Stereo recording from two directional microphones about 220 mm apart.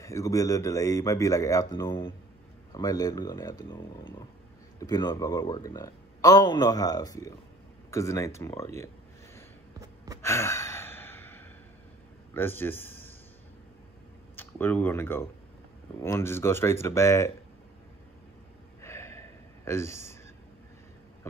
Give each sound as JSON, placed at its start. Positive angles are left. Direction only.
{"t": 0.0, "sound": "speech", "side_deg": 15}
{"t": 10.2, "sound": "sigh", "side_deg": 10}
{"t": 12.4, "sound": "speech", "side_deg": 10}
{"t": 14.3, "sound": "speech", "side_deg": 10}
{"t": 18.8, "sound": "gasp", "side_deg": 10}